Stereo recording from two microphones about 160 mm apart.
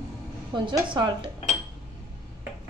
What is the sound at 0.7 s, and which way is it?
Speech, 30° right (ahead or behind).